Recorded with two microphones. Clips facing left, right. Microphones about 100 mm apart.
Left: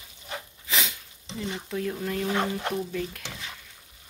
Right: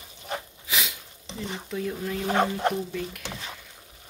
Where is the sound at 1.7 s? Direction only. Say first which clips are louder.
Even; centre (ahead or behind).